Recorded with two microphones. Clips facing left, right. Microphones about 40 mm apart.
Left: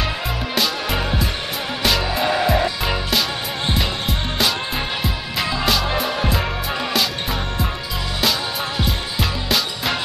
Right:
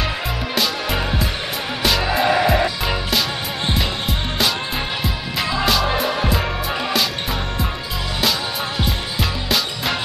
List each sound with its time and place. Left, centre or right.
0.6 s music: centre
5.0 s music: centre
8.2 s music: centre